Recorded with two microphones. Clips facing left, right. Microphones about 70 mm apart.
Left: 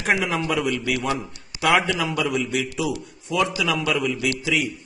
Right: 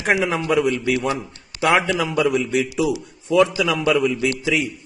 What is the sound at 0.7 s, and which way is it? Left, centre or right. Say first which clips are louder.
Speech: right 4 dB; right.